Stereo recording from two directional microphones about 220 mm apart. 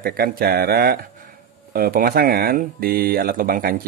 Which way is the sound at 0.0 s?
45° right (ahead or behind).